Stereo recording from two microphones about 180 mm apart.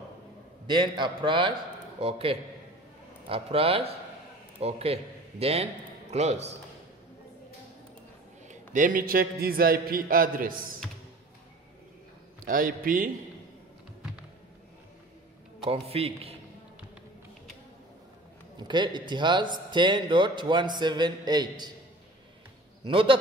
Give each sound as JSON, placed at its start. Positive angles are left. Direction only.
{"t": 0.7, "sound": "a man's voice", "side_deg": -25}
{"t": 8.5, "sound": "a man's voice", "side_deg": -45}
{"t": 12.4, "sound": "a man's voice", "side_deg": -50}
{"t": 15.6, "sound": "a man's voice", "side_deg": -35}
{"t": 18.6, "sound": "a man's voice", "side_deg": -25}
{"t": 22.8, "sound": "a man's voice", "side_deg": -30}